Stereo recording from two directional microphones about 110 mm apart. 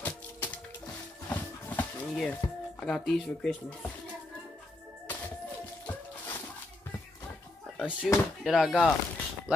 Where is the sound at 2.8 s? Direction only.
5° left (ahead or behind).